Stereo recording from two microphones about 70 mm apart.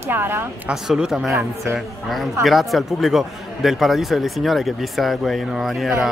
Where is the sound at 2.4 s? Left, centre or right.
Centre.